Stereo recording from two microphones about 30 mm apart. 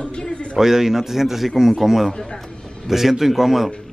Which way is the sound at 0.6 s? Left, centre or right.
Centre.